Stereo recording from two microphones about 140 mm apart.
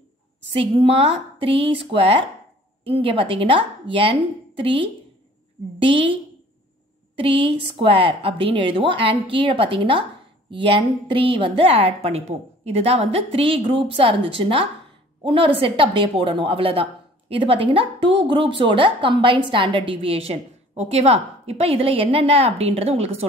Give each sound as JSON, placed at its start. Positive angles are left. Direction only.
{"t": 0.5, "sound": "a woman's voice", "side_deg": -40}
{"t": 7.2, "sound": "a woman's voice", "side_deg": -40}